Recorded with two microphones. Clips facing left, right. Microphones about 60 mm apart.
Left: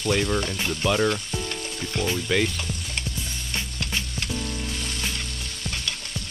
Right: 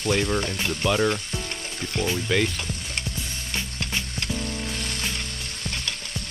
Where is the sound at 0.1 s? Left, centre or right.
Centre.